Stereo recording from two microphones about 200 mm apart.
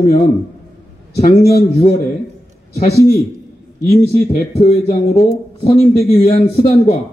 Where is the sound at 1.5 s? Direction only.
30° left (ahead or behind).